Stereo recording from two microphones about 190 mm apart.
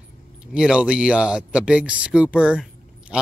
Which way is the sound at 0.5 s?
5° right (ahead or behind).